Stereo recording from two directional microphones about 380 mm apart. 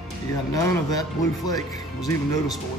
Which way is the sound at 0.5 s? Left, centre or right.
Centre.